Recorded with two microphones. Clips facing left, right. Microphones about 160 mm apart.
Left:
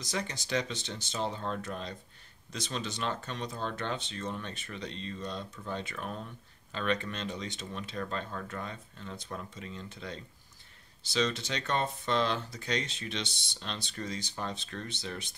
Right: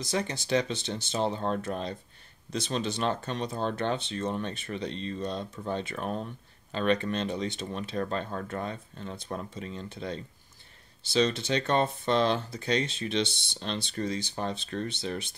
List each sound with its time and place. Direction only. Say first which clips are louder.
0.0 s speech: right 5 dB; 30° right (ahead or behind)